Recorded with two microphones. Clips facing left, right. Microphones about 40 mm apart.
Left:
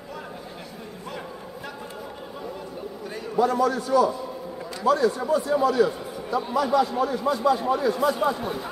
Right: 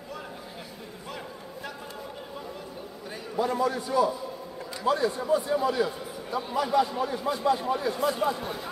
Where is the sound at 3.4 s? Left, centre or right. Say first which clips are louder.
Left 5 dB; left.